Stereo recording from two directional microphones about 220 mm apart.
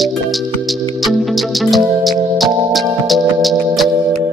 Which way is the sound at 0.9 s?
Centre (ahead or behind).